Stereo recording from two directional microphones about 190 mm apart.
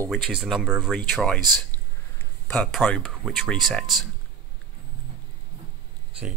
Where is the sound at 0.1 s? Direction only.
Centre (ahead or behind).